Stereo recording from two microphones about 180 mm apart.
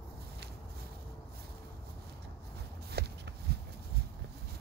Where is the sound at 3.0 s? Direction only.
65° right (ahead or behind).